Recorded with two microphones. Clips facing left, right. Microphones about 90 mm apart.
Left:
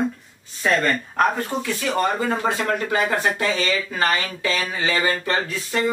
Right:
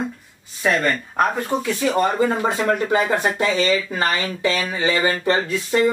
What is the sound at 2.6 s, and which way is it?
Speech, 20° right (ahead or behind).